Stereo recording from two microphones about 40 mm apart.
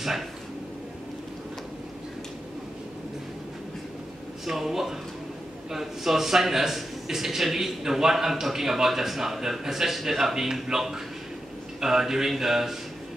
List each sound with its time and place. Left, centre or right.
4.5 s a man's voice: centre